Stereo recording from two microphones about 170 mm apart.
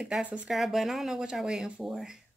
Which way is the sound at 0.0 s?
5° right (ahead or behind).